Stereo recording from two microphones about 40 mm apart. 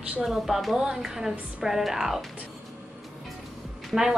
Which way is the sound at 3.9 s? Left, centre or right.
Centre.